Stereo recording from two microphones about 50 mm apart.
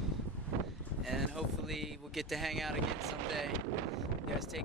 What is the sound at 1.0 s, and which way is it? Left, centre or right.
Speech, centre.